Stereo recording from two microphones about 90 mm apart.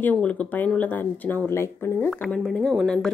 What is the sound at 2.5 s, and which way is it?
Speech, centre (ahead or behind).